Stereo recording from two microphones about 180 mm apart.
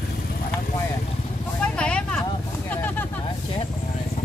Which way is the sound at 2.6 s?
10° left (ahead or behind).